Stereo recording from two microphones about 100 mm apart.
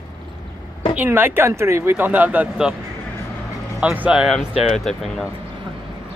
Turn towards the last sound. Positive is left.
turn(degrees=0)  # may be behind; listen again after turning